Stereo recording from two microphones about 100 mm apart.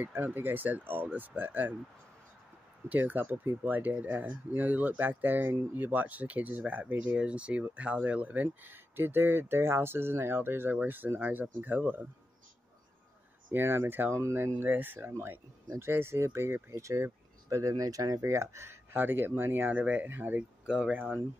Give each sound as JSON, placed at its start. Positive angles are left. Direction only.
{"t": 0.0, "sound": "speech", "side_deg": -20}
{"t": 2.9, "sound": "speech", "side_deg": -15}
{"t": 13.5, "sound": "speech", "side_deg": -20}